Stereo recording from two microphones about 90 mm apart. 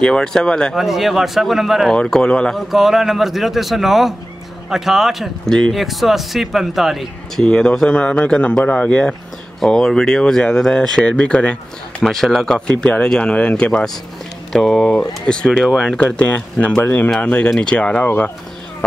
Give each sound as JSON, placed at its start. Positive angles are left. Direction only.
{"t": 0.0, "sound": "speech", "side_deg": 10}
{"t": 0.7, "sound": "speech", "side_deg": 0}
{"t": 2.7, "sound": "speech", "side_deg": -5}
{"t": 7.4, "sound": "speech", "side_deg": 10}